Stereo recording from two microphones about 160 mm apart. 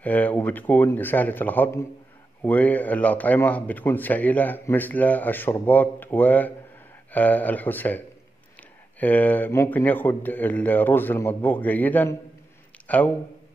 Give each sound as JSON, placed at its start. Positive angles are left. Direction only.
{"t": 0.0, "sound": "a man's voice", "side_deg": 10}
{"t": 9.0, "sound": "a man's voice", "side_deg": 10}